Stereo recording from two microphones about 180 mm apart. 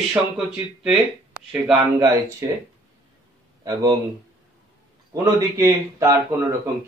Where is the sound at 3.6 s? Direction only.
20° right (ahead or behind).